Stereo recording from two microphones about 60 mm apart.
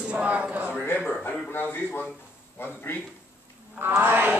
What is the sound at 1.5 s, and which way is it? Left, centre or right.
A man's voice, left.